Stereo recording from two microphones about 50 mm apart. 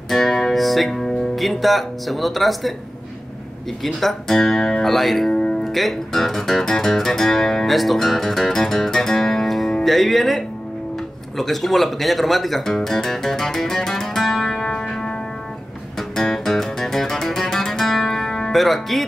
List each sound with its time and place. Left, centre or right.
0.1 s speech: centre
3.8 s speech: centre
5.3 s music: centre
5.6 s speech: centre
16.0 s music: centre